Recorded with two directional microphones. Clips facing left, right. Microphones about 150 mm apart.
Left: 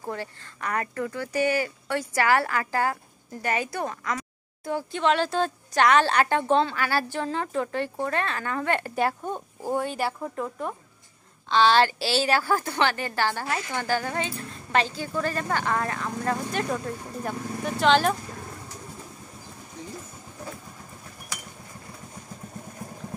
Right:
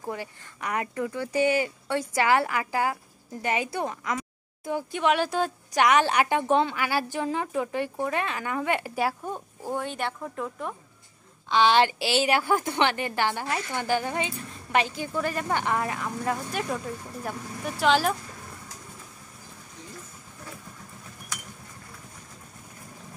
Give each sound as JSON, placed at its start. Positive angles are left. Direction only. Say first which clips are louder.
{"t": 0.1, "sound": "speech", "louder": "left 1 dB", "side_deg": -15}
{"t": 11.5, "sound": "a woman's voice", "louder": "left 1 dB", "side_deg": -15}